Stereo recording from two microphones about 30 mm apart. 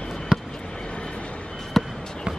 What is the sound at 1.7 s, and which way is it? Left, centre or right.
Basketball bounce, centre.